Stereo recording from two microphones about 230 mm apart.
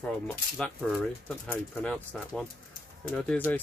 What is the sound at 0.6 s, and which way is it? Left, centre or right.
Speech, centre.